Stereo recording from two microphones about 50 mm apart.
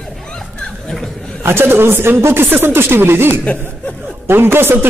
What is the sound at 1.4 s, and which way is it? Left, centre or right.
A man's voice, right.